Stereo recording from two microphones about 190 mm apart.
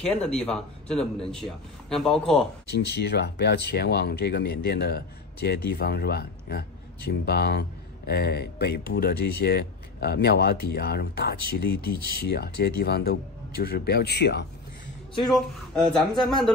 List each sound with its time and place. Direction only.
0.0 s speech: 5° left (ahead or behind)
2.7 s speech: 60° left (ahead or behind)
15.3 s speech: centre (ahead or behind)